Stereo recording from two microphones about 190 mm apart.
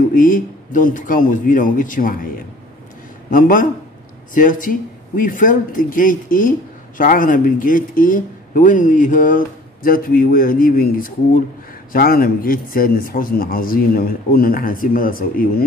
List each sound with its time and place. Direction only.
0.1 s speech: 45° left (ahead or behind)
3.3 s speech: 45° left (ahead or behind)